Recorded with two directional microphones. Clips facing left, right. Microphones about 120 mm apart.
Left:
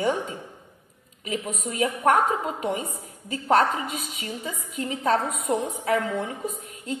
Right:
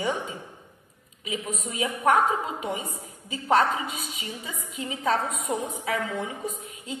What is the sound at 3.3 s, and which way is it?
A woman's voice, 45° left (ahead or behind).